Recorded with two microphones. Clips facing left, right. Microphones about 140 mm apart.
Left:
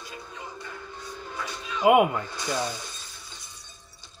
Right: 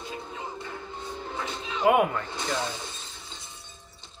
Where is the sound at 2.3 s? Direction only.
25° right (ahead or behind).